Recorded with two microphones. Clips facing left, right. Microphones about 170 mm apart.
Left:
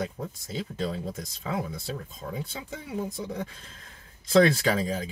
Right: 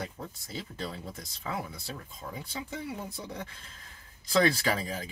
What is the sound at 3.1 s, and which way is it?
Speech, 20° left (ahead or behind).